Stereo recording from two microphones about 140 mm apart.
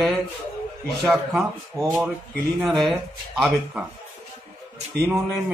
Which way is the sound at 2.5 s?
Centre (ahead or behind).